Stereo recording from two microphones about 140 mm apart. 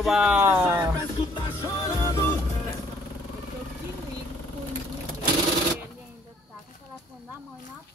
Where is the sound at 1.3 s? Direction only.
35° left (ahead or behind).